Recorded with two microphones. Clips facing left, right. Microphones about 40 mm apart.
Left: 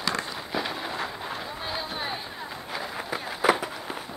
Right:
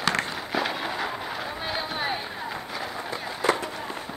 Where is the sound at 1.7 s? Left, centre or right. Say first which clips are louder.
Right 3 dB; centre.